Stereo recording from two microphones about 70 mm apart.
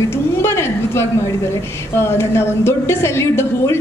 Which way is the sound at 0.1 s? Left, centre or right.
Left.